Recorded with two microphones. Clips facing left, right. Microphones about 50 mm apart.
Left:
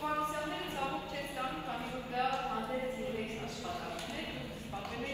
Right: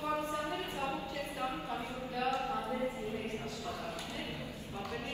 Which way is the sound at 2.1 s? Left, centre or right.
Left.